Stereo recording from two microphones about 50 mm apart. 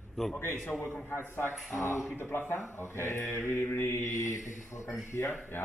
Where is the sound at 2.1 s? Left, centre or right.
Left.